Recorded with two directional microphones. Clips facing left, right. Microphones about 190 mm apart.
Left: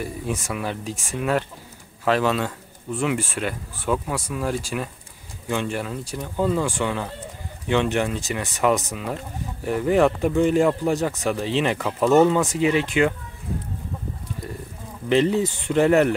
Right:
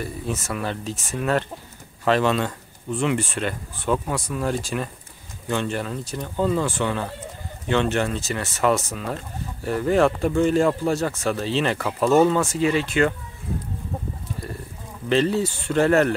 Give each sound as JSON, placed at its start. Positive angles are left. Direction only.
{"t": 0.0, "sound": "speech", "side_deg": 10}
{"t": 15.0, "sound": "speech", "side_deg": 15}